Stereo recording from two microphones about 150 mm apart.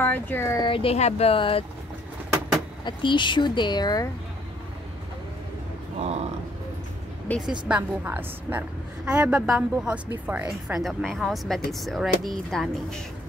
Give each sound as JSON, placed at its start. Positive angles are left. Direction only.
{"t": 0.0, "sound": "speech", "side_deg": 15}
{"t": 0.7, "sound": "speech", "side_deg": 35}
{"t": 2.8, "sound": "speech", "side_deg": 30}
{"t": 5.9, "sound": "speech", "side_deg": -45}
{"t": 7.3, "sound": "speech", "side_deg": 10}
{"t": 7.6, "sound": "a woman's voice", "side_deg": -10}